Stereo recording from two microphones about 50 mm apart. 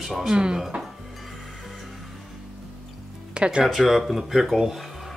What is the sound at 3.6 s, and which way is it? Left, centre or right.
Speech, centre.